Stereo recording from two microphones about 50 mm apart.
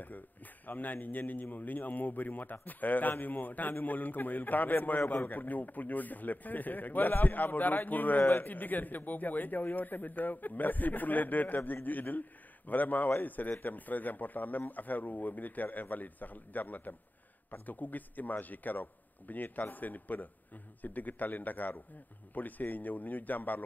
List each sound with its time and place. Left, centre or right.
0.7 s speech: left